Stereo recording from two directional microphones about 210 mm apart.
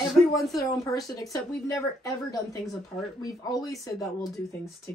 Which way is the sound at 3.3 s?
15° left (ahead or behind).